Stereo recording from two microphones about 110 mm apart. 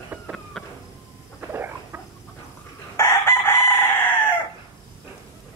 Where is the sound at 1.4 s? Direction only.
20° right (ahead or behind).